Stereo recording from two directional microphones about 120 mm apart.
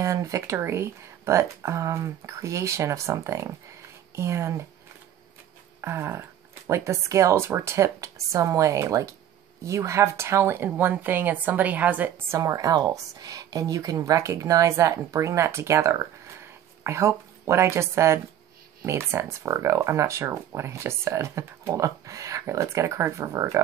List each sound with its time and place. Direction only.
0.0 s speech: 25° right (ahead or behind)
5.8 s dog: 20° right (ahead or behind)
6.7 s speech: 25° right (ahead or behind)
12.4 s speech: 30° right (ahead or behind)